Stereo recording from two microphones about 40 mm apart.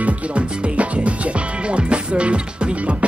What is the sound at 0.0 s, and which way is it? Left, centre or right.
Music, right.